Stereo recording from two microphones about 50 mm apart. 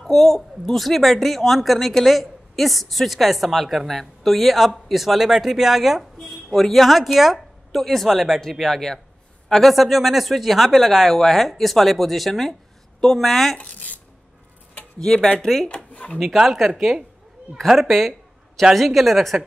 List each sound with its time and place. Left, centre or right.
0.0 s a woman's voice: centre
13.6 s speech: left
15.0 s speech: centre
15.7 s drawer open or close: left
16.3 s speech: centre